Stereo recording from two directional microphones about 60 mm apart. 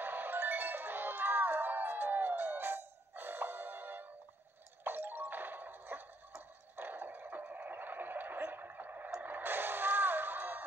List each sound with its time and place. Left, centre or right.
0.0 s music: right